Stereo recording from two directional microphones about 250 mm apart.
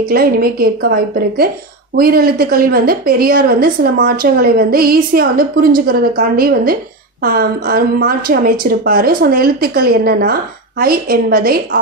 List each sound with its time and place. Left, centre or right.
0.1 s a woman's voice: right